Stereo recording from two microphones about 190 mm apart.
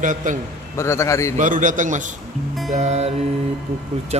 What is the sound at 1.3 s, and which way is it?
A man's voice, 45° right (ahead or behind).